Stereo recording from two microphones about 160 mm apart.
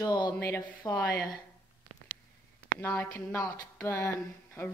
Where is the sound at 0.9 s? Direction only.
5° left (ahead or behind).